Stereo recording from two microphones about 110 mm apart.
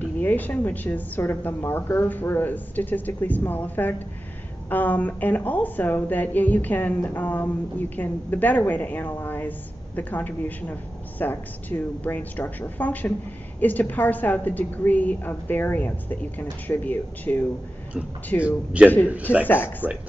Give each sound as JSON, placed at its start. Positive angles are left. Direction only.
{"t": 0.0, "sound": "a woman's voice", "side_deg": 15}
{"t": 18.7, "sound": "a man's voice", "side_deg": -10}
{"t": 19.4, "sound": "a woman's voice", "side_deg": 15}